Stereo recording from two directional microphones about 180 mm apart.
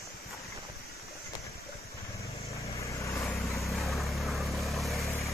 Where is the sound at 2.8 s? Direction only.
15° left (ahead or behind).